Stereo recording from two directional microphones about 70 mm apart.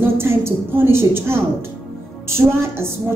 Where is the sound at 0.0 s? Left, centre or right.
Right.